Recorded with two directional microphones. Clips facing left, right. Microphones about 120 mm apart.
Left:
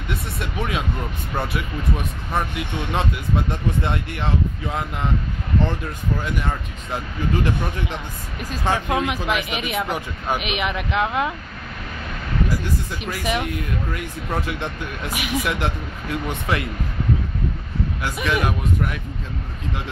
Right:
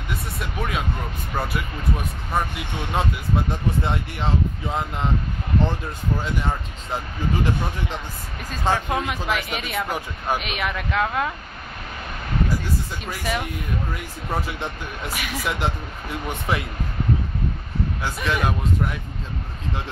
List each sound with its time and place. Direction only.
0.4 s speech: centre (ahead or behind); by 7.0 s 20° right (ahead or behind)
8.6 s speech: 15° left (ahead or behind)
9.8 s speech: 10° right (ahead or behind)
10.3 s speech: 15° left (ahead or behind)
13.2 s speech: 15° left (ahead or behind)
14.3 s speech: 10° right (ahead or behind)
15.4 s speech: 20° right (ahead or behind)
18.1 s speech: 10° left (ahead or behind)